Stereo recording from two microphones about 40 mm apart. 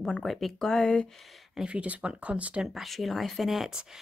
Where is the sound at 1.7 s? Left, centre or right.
Right.